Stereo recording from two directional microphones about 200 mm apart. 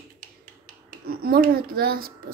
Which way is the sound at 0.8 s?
50° right (ahead or behind).